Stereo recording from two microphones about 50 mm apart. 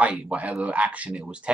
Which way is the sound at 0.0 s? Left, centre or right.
Right.